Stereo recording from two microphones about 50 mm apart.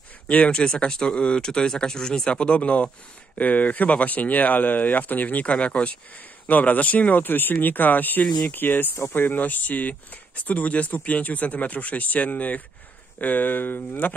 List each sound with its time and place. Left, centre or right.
0.3 s speech: left
0.6 s speech: centre; by 14.1 s left